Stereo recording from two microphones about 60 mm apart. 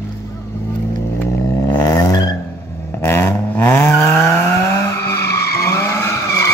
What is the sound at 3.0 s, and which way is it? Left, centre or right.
Vehicle, left.